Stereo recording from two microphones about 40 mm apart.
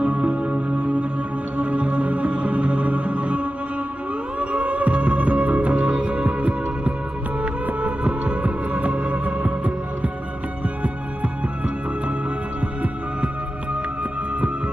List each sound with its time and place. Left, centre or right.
0.0 s music: right